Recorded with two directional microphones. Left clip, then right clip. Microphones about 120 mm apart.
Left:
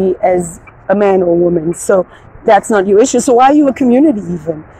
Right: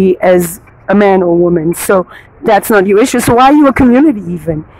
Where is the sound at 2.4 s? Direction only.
45° right (ahead or behind); by 4.5 s 30° right (ahead or behind).